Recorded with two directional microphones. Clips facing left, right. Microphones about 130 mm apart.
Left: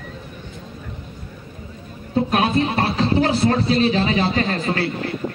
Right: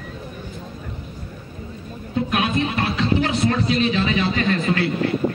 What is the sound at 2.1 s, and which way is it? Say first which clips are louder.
Speech: left 3 dB; 35° left (ahead or behind).